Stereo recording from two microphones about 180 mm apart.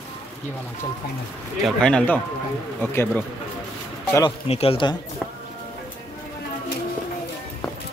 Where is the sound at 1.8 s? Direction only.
5° left (ahead or behind).